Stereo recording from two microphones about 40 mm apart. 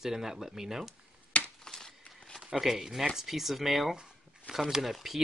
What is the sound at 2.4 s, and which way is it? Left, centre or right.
Speech, centre.